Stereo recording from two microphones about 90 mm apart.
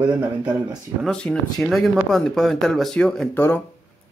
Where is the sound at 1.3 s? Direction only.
20° left (ahead or behind).